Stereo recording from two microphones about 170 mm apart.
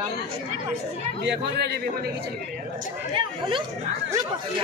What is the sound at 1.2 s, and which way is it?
Speech, 80° right.